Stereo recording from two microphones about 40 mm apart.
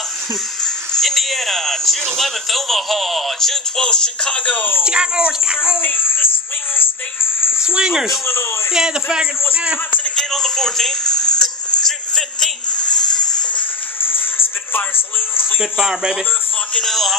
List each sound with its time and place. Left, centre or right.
1.0 s speech: centre
3.8 s speech: centre
4.8 s speech: right
5.8 s speech: left
7.6 s speech: centre
10.3 s speech: centre
11.8 s music: centre
15.6 s speech: centre
16.8 s speech: centre